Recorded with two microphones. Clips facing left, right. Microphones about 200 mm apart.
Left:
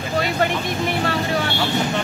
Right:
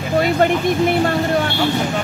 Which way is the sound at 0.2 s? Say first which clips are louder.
Right 6 dB; 50° right (ahead or behind).